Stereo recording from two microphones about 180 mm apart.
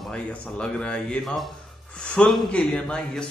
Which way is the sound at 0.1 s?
5° left (ahead or behind).